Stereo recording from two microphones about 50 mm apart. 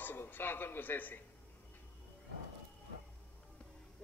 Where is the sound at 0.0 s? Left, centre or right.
Left.